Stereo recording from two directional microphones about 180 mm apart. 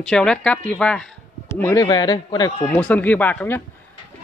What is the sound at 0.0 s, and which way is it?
Speech, 5° left (ahead or behind).